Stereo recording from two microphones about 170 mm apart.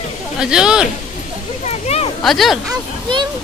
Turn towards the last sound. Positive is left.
turn(degrees=-25)  # may be behind; listen again after turning